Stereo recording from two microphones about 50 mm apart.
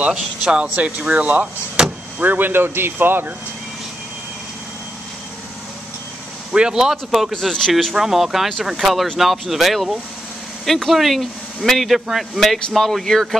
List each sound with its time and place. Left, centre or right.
0.0 s speech: centre
0.7 s speech: right
1.8 s vehicle: centre
2.1 s speech: right
6.5 s speech: centre
7.3 s speech: centre
7.9 s speech: centre